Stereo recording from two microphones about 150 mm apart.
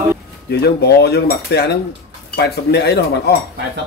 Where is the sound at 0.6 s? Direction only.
90° left.